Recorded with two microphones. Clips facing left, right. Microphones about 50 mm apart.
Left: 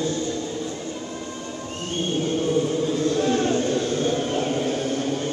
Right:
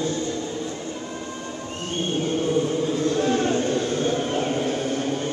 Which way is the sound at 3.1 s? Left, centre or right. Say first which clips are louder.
Even; right.